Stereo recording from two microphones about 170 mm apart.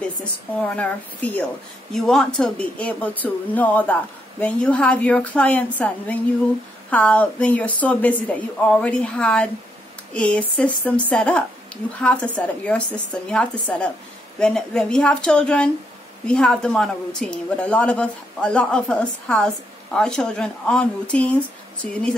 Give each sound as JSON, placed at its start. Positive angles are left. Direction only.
{"t": 0.6, "sound": "a woman's voice", "side_deg": 10}